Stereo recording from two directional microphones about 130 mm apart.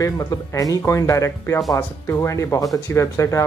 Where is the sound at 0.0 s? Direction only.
25° left (ahead or behind).